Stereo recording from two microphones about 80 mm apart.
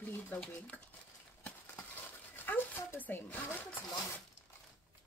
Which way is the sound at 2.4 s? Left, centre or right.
Left.